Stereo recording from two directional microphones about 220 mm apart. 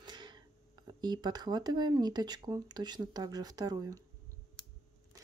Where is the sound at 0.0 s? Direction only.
20° right (ahead or behind).